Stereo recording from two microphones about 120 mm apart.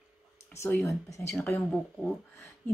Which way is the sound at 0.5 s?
20° left (ahead or behind).